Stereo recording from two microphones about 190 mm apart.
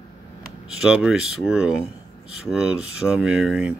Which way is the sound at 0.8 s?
5° right (ahead or behind).